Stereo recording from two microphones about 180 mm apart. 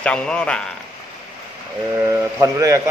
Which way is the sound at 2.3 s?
15° right (ahead or behind).